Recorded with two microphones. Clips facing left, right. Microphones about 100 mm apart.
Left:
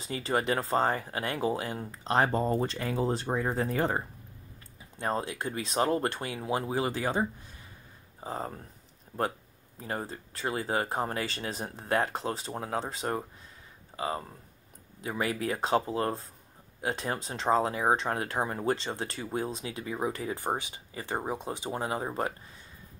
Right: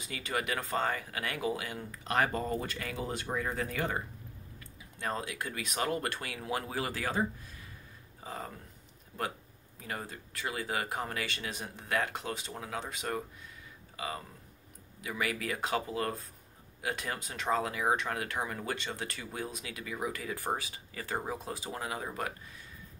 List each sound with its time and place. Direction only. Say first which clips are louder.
0.0 s speech: left 6 dB; 35° left (ahead or behind)
9.8 s speech: left 5 dB; 30° left (ahead or behind)